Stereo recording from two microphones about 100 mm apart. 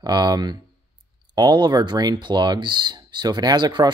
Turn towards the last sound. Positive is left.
turn(degrees=-45)  # may be behind; listen again after turning